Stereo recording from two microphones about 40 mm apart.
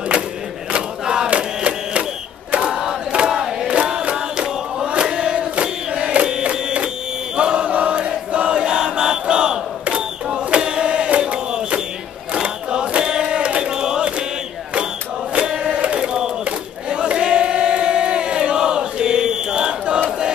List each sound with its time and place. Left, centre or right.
0.7 s crowd: centre
1.3 s a sound: right
2.7 s crowd: centre
4.8 s crowd: right
6.4 s a sound: right
7.3 s chant: right
9.8 s cash register: right
11.1 s battle cry: right
12.4 s battle cry: right
13.6 s chant: centre
15.3 s crowd: right